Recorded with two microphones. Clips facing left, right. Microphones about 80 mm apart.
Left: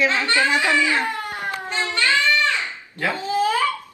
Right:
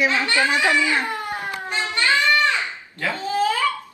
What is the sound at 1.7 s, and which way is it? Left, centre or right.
Child singing, right.